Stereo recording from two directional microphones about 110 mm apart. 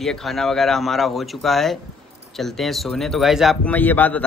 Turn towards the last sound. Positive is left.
turn(degrees=15)  # may be behind; listen again after turning